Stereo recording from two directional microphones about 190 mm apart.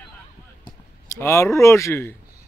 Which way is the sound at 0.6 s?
15° left (ahead or behind).